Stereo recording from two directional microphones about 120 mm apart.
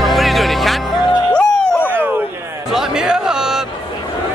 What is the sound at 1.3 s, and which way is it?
Music, 15° left (ahead or behind).